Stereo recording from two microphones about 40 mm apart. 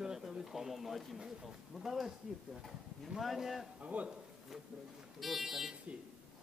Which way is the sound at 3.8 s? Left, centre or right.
Right.